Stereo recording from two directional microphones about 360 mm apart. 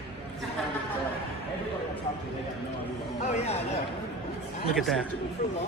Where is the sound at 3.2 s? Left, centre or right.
Centre.